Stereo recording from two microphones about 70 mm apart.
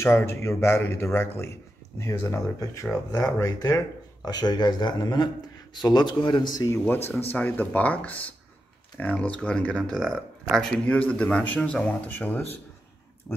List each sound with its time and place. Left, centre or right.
0.0 s a man's voice: left
6.9 s speech: left; by 10.7 s centre
10.9 s speech: centre